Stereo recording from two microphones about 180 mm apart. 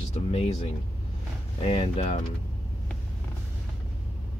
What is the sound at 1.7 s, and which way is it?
Speech, 35° left (ahead or behind).